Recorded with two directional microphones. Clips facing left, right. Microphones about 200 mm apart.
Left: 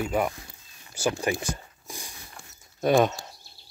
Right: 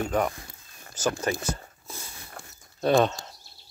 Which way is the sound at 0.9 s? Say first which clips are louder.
Left 1 dB; 10° left (ahead or behind).